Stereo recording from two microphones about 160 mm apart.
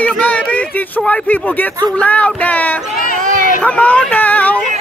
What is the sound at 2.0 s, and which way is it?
Speech, 10° left (ahead or behind).